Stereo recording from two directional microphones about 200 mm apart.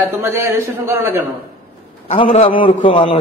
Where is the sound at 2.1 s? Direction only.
30° left (ahead or behind).